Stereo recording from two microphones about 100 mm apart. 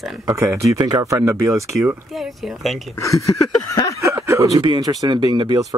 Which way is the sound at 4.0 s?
30° right (ahead or behind).